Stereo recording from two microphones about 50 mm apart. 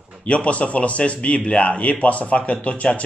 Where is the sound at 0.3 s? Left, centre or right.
Left.